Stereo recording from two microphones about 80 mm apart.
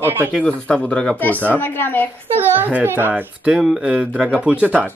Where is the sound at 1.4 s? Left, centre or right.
Left.